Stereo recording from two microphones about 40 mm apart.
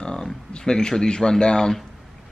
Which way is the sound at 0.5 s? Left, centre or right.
Centre.